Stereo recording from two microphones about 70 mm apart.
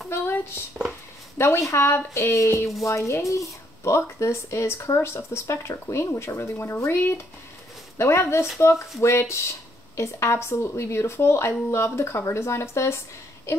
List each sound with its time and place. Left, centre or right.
0.1 s speech: left